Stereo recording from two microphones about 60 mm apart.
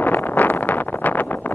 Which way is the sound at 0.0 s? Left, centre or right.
Left.